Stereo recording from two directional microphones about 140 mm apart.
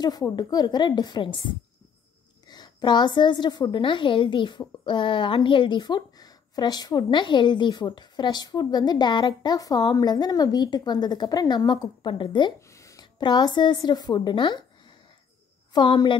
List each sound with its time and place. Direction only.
0.0 s a woman's voice: 30° left (ahead or behind)
12.5 s a woman's voice: 20° left (ahead or behind)